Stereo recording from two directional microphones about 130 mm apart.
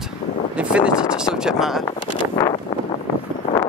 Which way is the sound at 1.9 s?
35° left (ahead or behind).